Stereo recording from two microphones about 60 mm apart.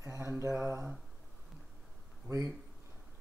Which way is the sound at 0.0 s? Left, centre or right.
Right.